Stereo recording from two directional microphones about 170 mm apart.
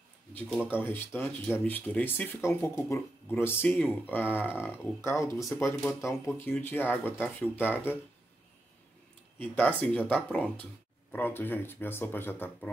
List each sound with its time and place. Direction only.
0.3 s speech: 10° left (ahead or behind)
9.4 s speech: 10° left (ahead or behind)